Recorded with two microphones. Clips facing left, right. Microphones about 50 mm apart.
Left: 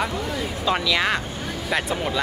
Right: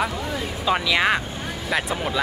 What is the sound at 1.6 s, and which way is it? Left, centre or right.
Speech, centre.